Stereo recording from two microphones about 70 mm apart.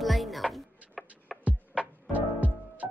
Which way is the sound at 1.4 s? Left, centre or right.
Centre.